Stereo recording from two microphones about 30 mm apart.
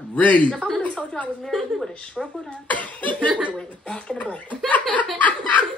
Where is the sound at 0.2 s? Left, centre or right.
Left.